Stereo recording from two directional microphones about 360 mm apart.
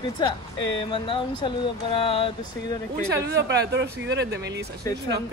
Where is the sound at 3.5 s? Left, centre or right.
Right.